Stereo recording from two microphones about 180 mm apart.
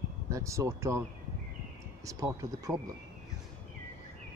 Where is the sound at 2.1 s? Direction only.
20° right (ahead or behind).